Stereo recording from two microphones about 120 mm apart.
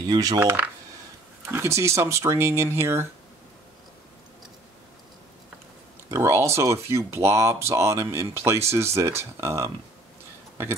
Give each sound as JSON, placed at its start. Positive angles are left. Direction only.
{"t": 0.1, "sound": "speech", "side_deg": -30}
{"t": 6.0, "sound": "speech", "side_deg": -25}